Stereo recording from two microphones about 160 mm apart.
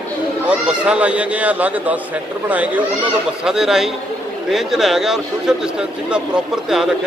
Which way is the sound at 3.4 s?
5° right (ahead or behind).